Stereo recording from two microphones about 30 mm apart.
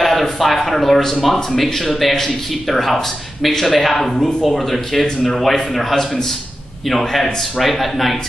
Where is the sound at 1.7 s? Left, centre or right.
Centre.